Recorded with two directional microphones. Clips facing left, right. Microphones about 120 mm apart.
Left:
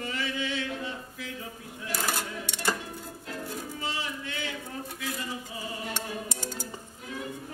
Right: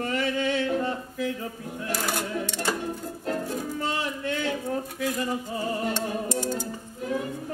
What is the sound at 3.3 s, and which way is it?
Music, 50° right (ahead or behind).